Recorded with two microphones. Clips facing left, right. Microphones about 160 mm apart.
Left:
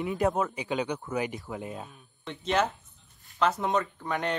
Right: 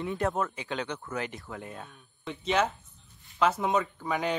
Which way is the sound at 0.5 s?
15° left (ahead or behind).